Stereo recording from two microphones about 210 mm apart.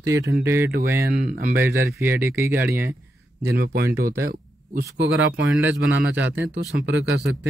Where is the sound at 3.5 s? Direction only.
50° right (ahead or behind).